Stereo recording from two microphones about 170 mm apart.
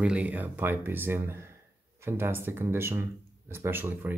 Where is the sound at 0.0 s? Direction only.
5° right (ahead or behind).